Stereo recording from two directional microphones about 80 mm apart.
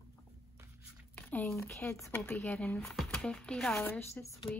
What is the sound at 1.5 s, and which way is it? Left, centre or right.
Speech, left.